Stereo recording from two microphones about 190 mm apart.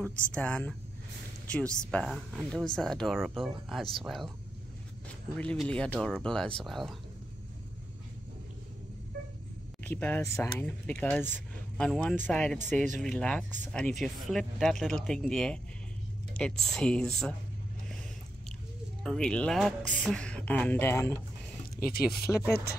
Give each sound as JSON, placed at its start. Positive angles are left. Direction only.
{"t": 0.0, "sound": "speech", "side_deg": 5}
{"t": 5.4, "sound": "speech", "side_deg": 5}
{"t": 9.8, "sound": "speech", "side_deg": 10}
{"t": 19.0, "sound": "speech", "side_deg": 5}
{"t": 21.7, "sound": "speech", "side_deg": 50}
{"t": 22.3, "sound": "speech", "side_deg": 0}